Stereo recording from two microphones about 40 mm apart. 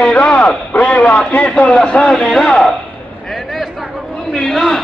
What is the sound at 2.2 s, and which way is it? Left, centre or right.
Speech, centre.